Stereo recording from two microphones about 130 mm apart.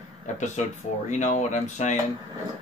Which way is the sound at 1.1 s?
65° left (ahead or behind).